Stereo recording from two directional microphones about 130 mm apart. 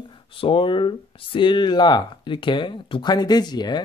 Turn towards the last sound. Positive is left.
turn(degrees=35)  # may be behind; listen again after turning